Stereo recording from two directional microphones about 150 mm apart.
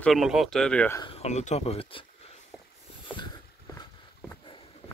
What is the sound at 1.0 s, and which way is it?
Speech, 40° left (ahead or behind).